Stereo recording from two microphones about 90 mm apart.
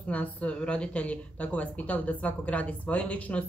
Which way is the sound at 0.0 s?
15° left (ahead or behind).